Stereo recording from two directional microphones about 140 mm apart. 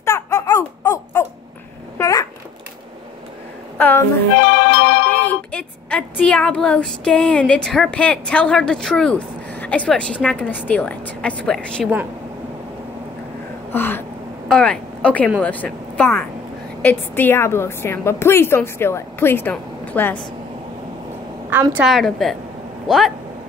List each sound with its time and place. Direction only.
0.0 s a sound: 20° left (ahead or behind)
2.0 s babbling: 25° left (ahead or behind)
3.7 s a sound: 15° left (ahead or behind)
4.5 s music: 90° left
5.1 s speech: 15° left (ahead or behind)
13.7 s a sound: 15° left (ahead or behind)
14.5 s speech: 5° left (ahead or behind)
21.5 s a woman's voice: 15° right (ahead or behind)
21.8 s a woman's voice: centre (ahead or behind)